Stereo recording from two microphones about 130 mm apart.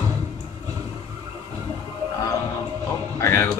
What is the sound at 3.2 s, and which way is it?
Music, 20° left (ahead or behind).